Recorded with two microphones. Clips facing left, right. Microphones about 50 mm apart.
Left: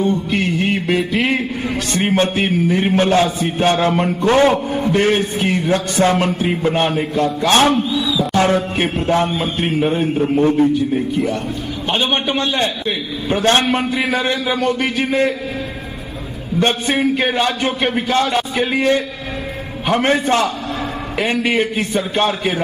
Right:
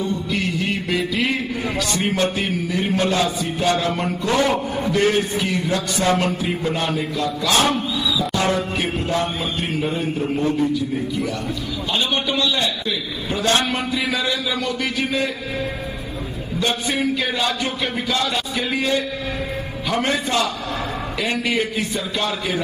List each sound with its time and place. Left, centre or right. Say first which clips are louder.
0.0 s a man's voice: left 5 dB; left
16.5 s a man's voice: left 5 dB; left